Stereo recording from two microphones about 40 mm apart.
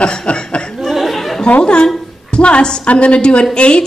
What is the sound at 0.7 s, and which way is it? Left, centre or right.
Chuckle, centre.